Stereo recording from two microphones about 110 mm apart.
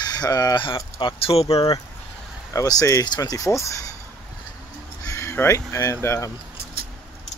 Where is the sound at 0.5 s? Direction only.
50° left (ahead or behind).